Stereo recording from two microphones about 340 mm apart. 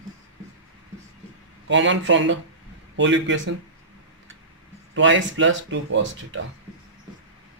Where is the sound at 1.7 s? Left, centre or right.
Right.